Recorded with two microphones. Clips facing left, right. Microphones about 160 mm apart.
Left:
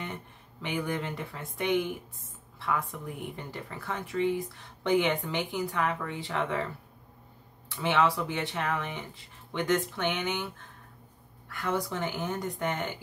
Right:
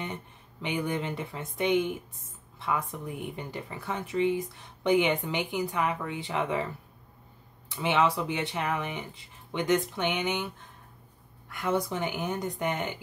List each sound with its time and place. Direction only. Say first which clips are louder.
0.0 s speech: right 2 dB; 20° right (ahead or behind)
7.7 s speech: right 1 dB; 20° right (ahead or behind)